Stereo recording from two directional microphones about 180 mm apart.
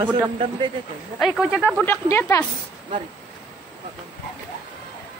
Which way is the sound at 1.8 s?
15° left (ahead or behind).